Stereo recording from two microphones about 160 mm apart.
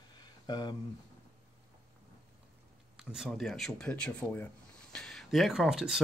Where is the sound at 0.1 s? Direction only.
25° left (ahead or behind).